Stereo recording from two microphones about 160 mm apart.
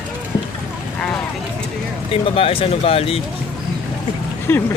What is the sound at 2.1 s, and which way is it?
Speech, 35° left (ahead or behind).